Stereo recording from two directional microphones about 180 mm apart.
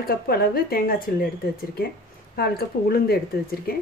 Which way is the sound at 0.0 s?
55° left (ahead or behind).